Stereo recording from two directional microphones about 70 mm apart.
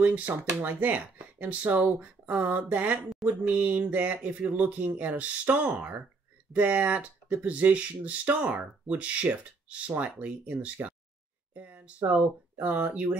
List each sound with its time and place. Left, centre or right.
0.0 s speech: centre